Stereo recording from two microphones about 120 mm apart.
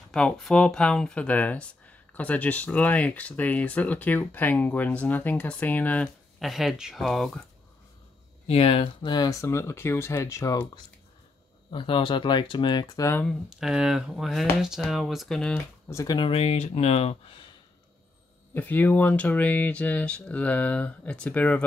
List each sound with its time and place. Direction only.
0.1 s speech: 5° left (ahead or behind)
6.4 s speech: centre (ahead or behind)
8.5 s speech: 55° left (ahead or behind)
9.1 s speech: 30° left (ahead or behind)
11.7 s speech: 45° left (ahead or behind)
13.3 s speech: 5° right (ahead or behind)
15.9 s speech: 30° left (ahead or behind)
16.2 s speech: 50° left (ahead or behind)
18.5 s speech: 15° left (ahead or behind)